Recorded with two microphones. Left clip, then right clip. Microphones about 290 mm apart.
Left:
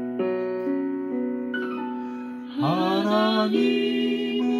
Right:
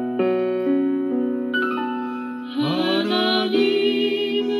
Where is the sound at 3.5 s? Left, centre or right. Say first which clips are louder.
Right 4 dB; right.